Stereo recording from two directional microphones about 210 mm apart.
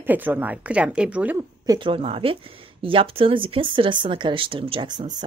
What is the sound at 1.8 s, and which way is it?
Speech, 25° right (ahead or behind).